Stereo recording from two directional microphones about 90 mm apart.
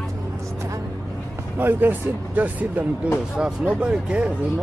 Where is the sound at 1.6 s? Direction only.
20° right (ahead or behind).